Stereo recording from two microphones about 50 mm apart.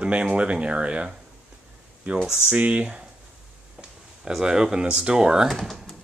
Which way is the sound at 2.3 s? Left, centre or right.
Right.